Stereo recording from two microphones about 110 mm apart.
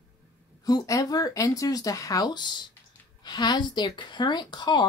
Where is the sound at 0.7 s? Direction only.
30° left (ahead or behind).